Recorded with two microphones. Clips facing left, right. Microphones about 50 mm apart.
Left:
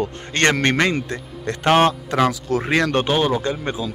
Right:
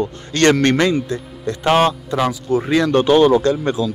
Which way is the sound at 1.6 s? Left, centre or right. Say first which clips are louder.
Right 1 dB; left.